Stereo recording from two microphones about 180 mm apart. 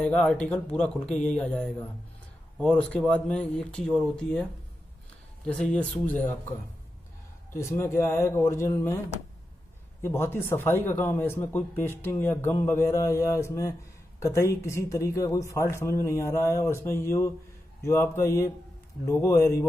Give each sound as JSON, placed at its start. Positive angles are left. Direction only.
{"t": 0.0, "sound": "speech", "side_deg": 5}
{"t": 7.5, "sound": "speech", "side_deg": 15}
{"t": 10.0, "sound": "speech", "side_deg": 15}